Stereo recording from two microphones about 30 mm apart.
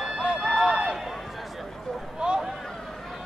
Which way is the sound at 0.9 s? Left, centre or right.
Centre.